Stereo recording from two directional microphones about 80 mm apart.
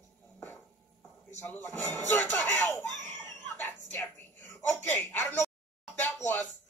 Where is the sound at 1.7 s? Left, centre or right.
Left.